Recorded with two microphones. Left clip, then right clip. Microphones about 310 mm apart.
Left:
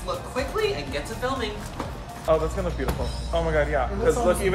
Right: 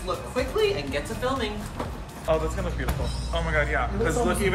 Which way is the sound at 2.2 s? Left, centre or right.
Left.